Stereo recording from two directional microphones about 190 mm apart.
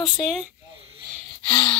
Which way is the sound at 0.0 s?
Centre (ahead or behind).